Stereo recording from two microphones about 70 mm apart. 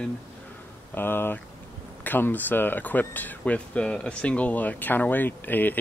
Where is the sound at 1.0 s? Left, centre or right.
Left.